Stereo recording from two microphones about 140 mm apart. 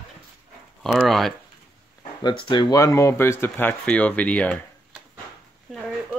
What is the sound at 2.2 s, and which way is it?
Speech, 35° left (ahead or behind).